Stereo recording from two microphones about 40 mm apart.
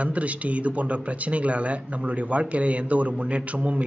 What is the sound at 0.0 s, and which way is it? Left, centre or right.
A man's voice, right.